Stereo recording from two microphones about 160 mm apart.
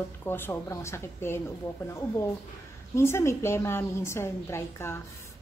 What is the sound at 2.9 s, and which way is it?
Speech, 15° left (ahead or behind).